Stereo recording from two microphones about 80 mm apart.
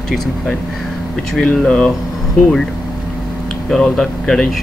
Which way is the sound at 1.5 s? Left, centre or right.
Centre.